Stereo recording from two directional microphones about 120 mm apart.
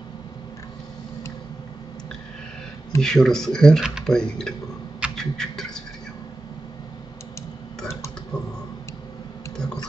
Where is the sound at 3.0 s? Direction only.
5° left (ahead or behind).